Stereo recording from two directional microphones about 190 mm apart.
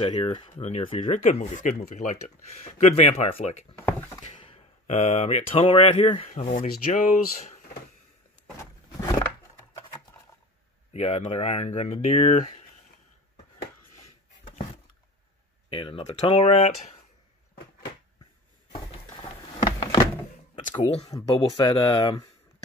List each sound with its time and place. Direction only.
0.0 s speech: 30° left (ahead or behind)
3.7 s speech: 10° left (ahead or behind)
4.3 s speech: 30° left (ahead or behind)
10.9 s speech: 35° left (ahead or behind)
15.7 s speech: 25° left (ahead or behind)
18.7 s a sound: 30° left (ahead or behind)
20.7 s speech: 35° left (ahead or behind)
21.1 s speech: 25° left (ahead or behind)